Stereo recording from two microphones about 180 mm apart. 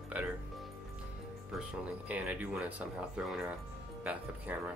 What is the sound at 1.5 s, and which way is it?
Speech, centre (ahead or behind).